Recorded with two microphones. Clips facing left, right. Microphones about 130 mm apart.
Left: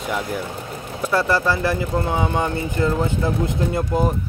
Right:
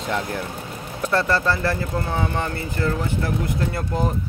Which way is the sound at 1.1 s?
10° left (ahead or behind).